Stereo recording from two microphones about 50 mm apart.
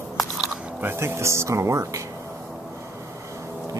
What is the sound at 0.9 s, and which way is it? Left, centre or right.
Speech, right.